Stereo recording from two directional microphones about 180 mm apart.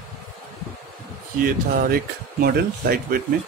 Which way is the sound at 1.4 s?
55° right (ahead or behind).